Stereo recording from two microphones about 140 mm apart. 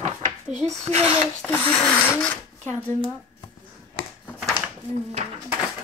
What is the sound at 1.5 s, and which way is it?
Speech, 10° left (ahead or behind).